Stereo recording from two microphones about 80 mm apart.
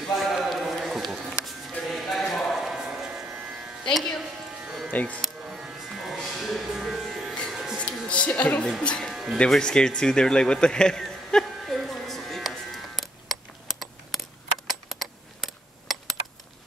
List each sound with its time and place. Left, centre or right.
0.1 s music: centre
3.8 s music: centre
4.9 s speech: centre
5.2 s a sound: centre
7.5 s music: centre
7.8 s music: centre
8.8 s speech: centre
9.1 s music: centre
9.5 s a sound: centre
14.7 s coin: centre